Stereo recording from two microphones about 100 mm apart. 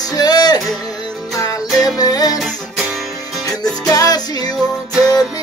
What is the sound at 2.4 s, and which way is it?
Music, 5° right (ahead or behind).